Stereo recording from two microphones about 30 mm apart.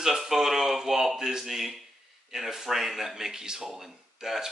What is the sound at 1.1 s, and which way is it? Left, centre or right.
Speech, centre.